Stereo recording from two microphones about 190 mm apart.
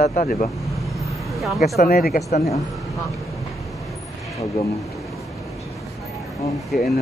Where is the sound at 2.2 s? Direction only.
35° left (ahead or behind).